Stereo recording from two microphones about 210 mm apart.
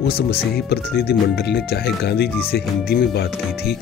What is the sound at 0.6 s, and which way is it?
Speech, 50° left (ahead or behind).